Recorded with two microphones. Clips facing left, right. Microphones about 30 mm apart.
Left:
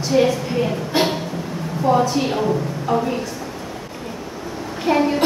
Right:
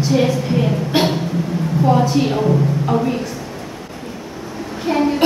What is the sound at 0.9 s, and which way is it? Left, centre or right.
Music, right.